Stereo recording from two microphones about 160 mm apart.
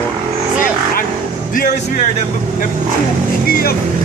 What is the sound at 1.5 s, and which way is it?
Speech, 60° left (ahead or behind).